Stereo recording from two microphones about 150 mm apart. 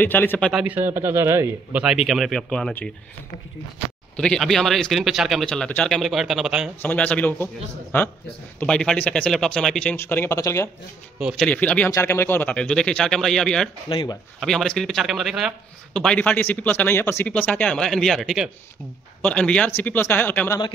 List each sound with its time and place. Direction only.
0.0 s speech: 15° left (ahead or behind)
0.5 s a man's voice: 5° right (ahead or behind)
4.2 s a man's voice: 5° left (ahead or behind)
6.8 s speech: 10° left (ahead or behind)
8.5 s a man's voice: 5° left (ahead or behind)
9.9 s speech: 15° left (ahead or behind)
11.1 s a man's voice: 5° right (ahead or behind)
11.4 s a man's voice: 10° left (ahead or behind)
13.8 s speech: 25° left (ahead or behind)
14.4 s a man's voice: centre (ahead or behind)